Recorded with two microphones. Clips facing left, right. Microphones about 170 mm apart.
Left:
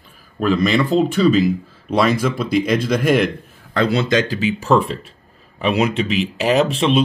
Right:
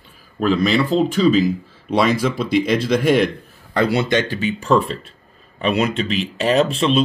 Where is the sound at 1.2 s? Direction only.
40° right (ahead or behind).